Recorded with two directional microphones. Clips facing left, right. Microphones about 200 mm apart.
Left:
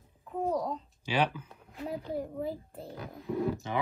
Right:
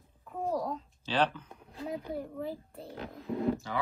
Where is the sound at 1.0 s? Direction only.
10° left (ahead or behind).